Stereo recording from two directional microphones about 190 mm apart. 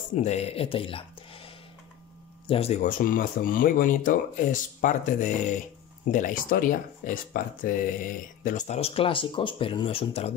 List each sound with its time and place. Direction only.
0.1 s speech: 35° left (ahead or behind)
2.4 s speech: 30° left (ahead or behind)